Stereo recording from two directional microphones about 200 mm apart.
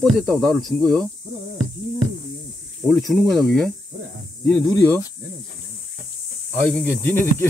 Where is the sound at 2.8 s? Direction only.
Centre (ahead or behind).